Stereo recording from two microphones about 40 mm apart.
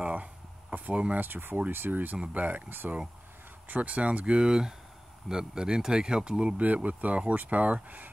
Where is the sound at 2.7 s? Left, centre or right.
Right.